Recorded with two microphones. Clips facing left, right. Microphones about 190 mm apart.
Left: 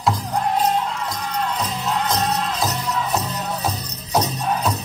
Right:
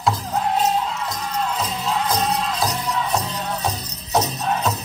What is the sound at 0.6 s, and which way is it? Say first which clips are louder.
Music: even; 5° right (ahead or behind).